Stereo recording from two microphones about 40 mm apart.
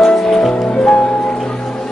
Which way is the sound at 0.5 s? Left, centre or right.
Left.